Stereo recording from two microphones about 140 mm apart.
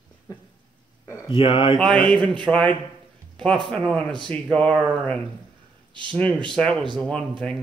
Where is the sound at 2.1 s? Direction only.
5° left (ahead or behind).